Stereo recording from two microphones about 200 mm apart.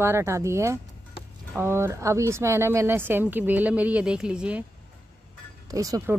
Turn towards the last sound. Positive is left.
turn(degrees=-15)  # may be behind; listen again after turning